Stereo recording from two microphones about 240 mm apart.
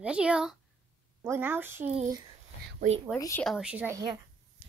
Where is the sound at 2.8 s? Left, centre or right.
Right.